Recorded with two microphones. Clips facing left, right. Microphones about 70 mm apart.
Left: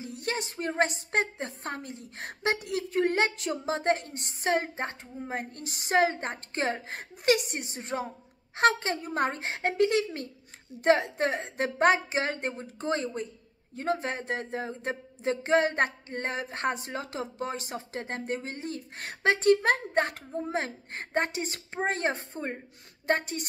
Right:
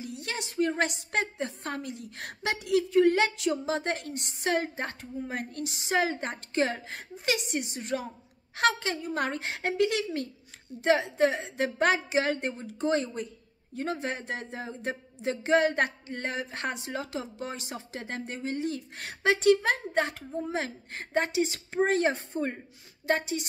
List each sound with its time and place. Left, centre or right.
0.0 s speech: left
10.8 s speech: left
23.0 s speech: left